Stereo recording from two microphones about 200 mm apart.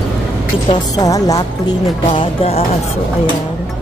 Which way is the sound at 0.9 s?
15° left (ahead or behind).